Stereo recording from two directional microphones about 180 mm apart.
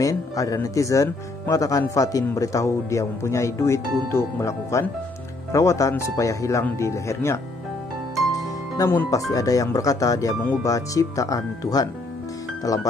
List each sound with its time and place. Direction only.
0.0 s speech: 20° left (ahead or behind)
8.7 s speech: 15° left (ahead or behind)